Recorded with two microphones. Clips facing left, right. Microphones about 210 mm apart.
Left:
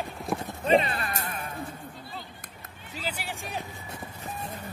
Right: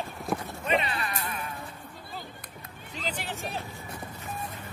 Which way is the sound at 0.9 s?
45° left (ahead or behind).